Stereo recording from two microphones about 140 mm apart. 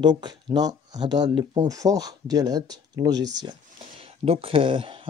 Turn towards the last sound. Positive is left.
turn(degrees=-35)  # may be behind; listen again after turning